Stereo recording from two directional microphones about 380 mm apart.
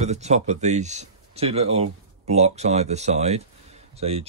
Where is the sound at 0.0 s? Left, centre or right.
Centre.